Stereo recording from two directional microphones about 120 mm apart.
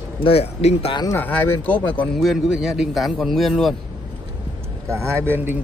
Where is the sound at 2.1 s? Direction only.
Centre (ahead or behind).